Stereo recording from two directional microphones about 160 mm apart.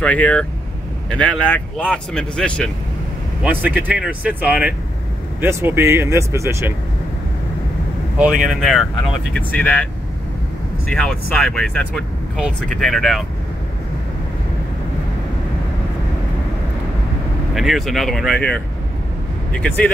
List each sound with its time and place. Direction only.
0.0 s speech: 10° left (ahead or behind)
3.4 s speech: 10° right (ahead or behind)
8.5 s speech: centre (ahead or behind)
10.9 s speech: 5° left (ahead or behind)
17.6 s speech: centre (ahead or behind)